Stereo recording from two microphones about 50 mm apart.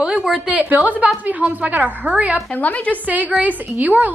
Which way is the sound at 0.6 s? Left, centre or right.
Right.